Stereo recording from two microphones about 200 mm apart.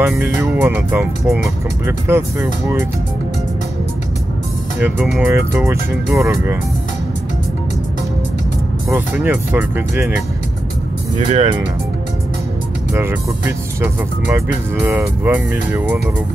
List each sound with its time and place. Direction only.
0.1 s speech: 10° right (ahead or behind)
1.9 s speech: 10° right (ahead or behind)
4.7 s speech: 10° right (ahead or behind)
8.9 s speech: 10° right (ahead or behind)
11.1 s speech: 30° right (ahead or behind)
12.9 s speech: 15° right (ahead or behind)